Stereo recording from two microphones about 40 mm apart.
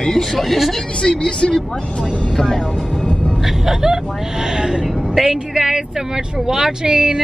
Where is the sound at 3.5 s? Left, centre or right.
Centre.